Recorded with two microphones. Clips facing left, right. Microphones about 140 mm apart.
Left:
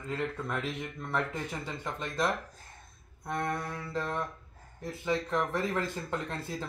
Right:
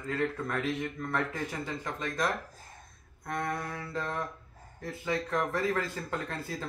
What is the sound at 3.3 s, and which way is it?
Speech, 5° left (ahead or behind).